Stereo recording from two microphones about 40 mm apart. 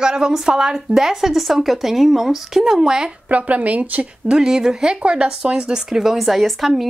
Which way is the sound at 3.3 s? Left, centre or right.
Right.